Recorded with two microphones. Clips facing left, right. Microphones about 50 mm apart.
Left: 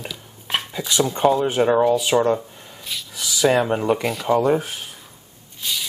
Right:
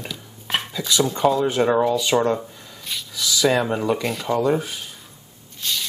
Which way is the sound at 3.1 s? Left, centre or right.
Left.